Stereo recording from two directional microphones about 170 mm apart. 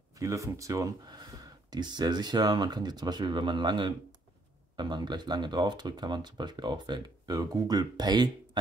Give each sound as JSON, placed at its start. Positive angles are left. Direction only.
{"t": 0.2, "sound": "speech", "side_deg": -20}